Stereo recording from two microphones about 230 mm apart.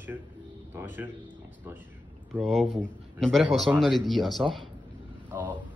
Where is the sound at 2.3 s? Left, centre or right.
Centre.